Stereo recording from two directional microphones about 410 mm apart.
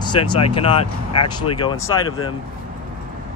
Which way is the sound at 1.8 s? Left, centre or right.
Left.